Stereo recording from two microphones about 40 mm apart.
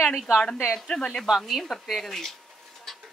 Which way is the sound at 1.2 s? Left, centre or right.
Centre.